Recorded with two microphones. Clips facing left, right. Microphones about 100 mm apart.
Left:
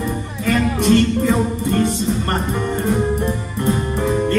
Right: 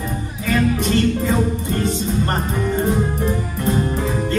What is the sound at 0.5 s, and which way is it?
Music, 60° left (ahead or behind).